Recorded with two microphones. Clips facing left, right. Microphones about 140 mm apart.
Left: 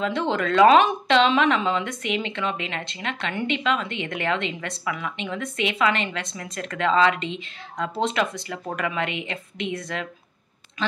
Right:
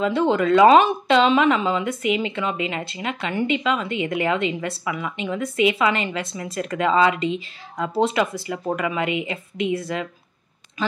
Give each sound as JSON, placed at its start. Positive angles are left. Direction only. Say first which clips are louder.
{"t": 0.0, "sound": "speech", "louder": "right 5 dB", "side_deg": -5}